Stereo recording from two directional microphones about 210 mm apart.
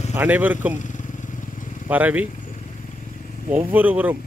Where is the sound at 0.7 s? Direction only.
35° left (ahead or behind).